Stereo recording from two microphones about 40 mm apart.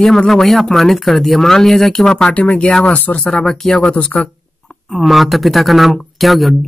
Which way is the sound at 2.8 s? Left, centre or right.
Left.